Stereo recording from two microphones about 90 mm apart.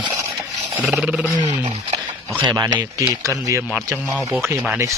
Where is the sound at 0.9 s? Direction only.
10° right (ahead or behind).